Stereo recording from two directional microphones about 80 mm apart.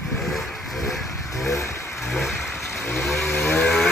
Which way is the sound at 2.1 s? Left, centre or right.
Centre.